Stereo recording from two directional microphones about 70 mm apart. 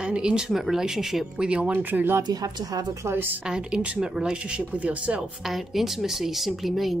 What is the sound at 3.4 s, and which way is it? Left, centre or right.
Speech, centre.